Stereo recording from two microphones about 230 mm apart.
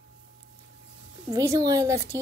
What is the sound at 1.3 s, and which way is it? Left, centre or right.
Speech, centre.